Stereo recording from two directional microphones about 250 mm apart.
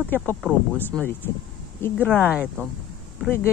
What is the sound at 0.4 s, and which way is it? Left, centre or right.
Speech, centre.